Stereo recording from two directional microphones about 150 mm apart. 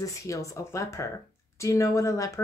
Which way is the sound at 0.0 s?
20° left (ahead or behind).